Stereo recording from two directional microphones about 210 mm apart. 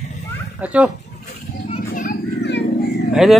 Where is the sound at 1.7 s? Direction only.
40° left (ahead or behind).